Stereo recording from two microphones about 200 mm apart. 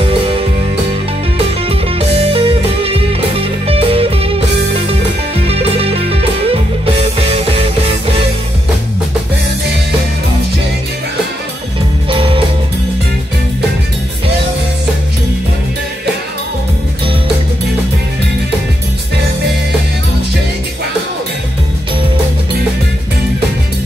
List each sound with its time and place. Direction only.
0.0 s music: 30° right (ahead or behind)
1.7 s music: 30° right (ahead or behind)
12.1 s music: 25° right (ahead or behind)